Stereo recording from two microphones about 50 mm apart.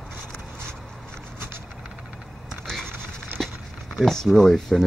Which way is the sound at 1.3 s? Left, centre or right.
Right.